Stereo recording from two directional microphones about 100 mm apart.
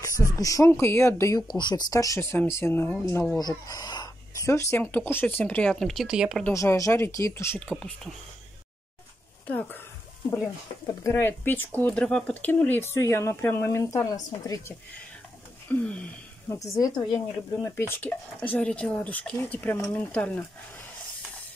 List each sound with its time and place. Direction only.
0.4 s speech: 35° left (ahead or behind)
1.5 s speech: 50° left (ahead or behind)
1.9 s a woman's voice: 35° left (ahead or behind)
3.3 s a sound: 40° left (ahead or behind)
4.4 s speech: 30° left (ahead or behind)
5.4 s speech: 10° left (ahead or behind)
6.0 s speech: 10° right (ahead or behind)
6.5 s speech: 30° left (ahead or behind)
7.6 s speech: 5° left (ahead or behind)
9.5 s speech: 15° left (ahead or behind)
11.1 s speech: 25° left (ahead or behind)
15.7 s speech: 10° left (ahead or behind)
16.4 s a woman's voice: 35° left (ahead or behind)
17.6 s speech: 25° left (ahead or behind)